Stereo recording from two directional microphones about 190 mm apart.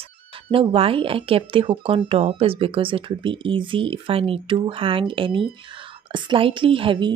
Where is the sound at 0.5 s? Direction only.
30° right (ahead or behind).